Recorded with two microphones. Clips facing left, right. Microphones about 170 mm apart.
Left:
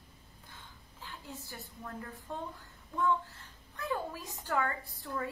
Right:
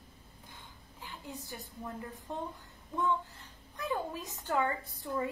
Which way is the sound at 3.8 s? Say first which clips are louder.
Right 1 dB; 20° right (ahead or behind).